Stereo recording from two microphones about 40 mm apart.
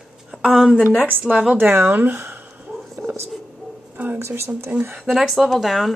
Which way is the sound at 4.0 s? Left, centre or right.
Right.